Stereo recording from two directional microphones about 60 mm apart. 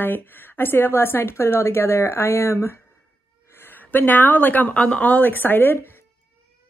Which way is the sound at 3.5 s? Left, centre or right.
Left.